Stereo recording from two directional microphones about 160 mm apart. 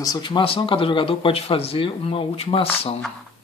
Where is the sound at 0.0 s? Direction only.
25° left (ahead or behind).